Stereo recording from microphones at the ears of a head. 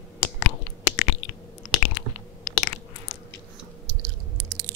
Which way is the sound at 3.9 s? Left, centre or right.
Right.